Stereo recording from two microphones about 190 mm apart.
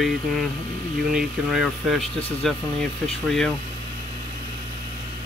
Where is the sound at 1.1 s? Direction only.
Centre (ahead or behind).